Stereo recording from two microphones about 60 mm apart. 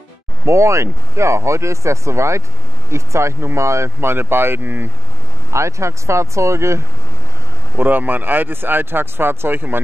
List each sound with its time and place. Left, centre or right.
0.5 s speech: right
5.5 s speech: right
7.7 s speech: right